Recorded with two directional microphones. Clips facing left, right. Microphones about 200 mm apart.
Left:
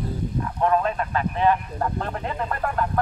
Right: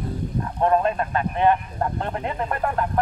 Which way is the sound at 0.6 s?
30° right (ahead or behind).